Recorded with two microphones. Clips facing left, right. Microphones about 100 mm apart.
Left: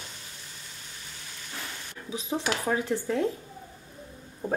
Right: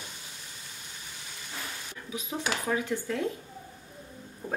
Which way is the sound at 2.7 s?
30° left (ahead or behind).